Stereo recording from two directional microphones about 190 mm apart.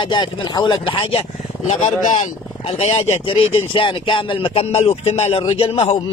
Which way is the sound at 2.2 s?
35° left (ahead or behind).